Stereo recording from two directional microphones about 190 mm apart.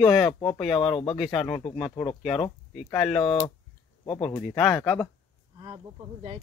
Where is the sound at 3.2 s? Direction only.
25° left (ahead or behind).